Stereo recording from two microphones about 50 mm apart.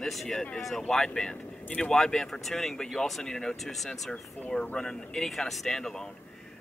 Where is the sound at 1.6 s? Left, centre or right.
Left.